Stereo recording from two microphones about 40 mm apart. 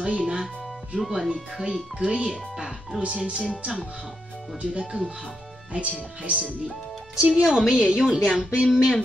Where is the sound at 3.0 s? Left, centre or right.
Right.